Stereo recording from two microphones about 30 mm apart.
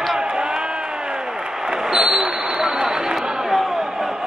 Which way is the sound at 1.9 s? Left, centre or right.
Centre.